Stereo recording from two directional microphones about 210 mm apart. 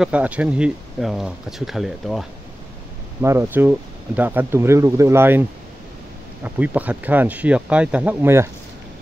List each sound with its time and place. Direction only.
0.0 s speech: 5° right (ahead or behind)
3.2 s speech: 10° right (ahead or behind)
6.4 s speech: 5° right (ahead or behind)